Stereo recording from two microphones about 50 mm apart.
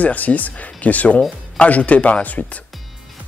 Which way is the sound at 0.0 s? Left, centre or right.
Left.